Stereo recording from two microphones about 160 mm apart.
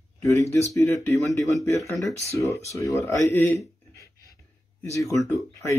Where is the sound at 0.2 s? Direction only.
15° left (ahead or behind).